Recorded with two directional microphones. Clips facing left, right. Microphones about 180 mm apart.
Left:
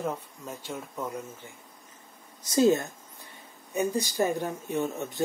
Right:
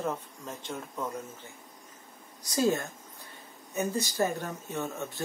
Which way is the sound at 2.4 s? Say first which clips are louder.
Left 5 dB; 25° left (ahead or behind).